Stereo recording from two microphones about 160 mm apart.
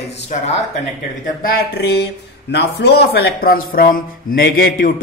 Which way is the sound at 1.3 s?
75° left (ahead or behind).